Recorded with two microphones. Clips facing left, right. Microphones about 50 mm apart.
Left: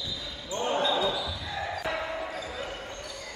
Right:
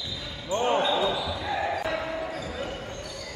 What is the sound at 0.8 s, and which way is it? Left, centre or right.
Basketball bounce, right.